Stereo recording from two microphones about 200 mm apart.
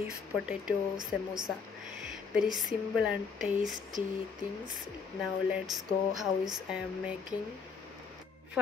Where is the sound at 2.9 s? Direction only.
5° right (ahead or behind).